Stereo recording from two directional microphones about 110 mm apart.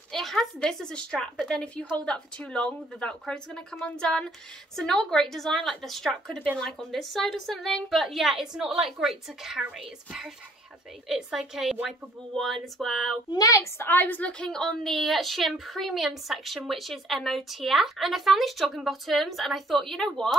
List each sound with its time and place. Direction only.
0.1 s a woman's voice: centre (ahead or behind)
13.3 s speech: 30° left (ahead or behind)
13.8 s a woman's voice: 15° left (ahead or behind)